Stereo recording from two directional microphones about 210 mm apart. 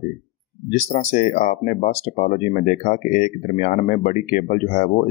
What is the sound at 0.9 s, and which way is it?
Speech, 35° left (ahead or behind).